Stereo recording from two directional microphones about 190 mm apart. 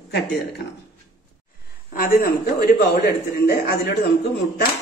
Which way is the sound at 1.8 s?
50° left (ahead or behind).